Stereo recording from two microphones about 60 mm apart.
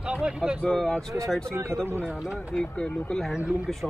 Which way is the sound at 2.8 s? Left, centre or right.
Centre.